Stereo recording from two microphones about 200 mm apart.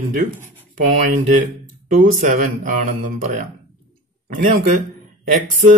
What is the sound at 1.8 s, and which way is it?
A man's voice, 45° right (ahead or behind).